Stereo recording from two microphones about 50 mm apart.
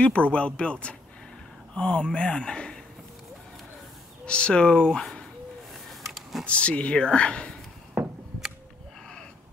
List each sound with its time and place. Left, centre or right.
0.0 s speech: left
4.3 s speech: left
5.9 s a sound: centre
6.4 s speech: left
8.0 s chop: right